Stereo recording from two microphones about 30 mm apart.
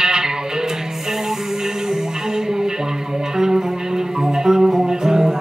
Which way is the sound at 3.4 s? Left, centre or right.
Centre.